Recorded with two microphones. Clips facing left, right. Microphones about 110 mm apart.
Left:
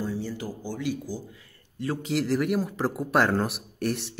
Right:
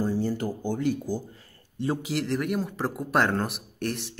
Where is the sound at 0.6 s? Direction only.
50° right (ahead or behind).